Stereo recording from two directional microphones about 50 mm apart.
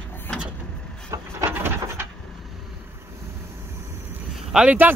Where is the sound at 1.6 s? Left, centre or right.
Right.